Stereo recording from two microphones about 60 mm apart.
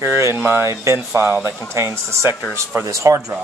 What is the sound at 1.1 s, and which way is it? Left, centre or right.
Speech, right.